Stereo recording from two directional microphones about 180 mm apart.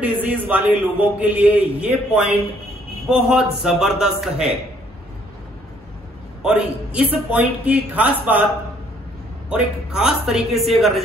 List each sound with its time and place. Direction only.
0.0 s a man's voice: 10° right (ahead or behind)
6.4 s a man's voice: 5° right (ahead or behind)
9.5 s a man's voice: 5° right (ahead or behind)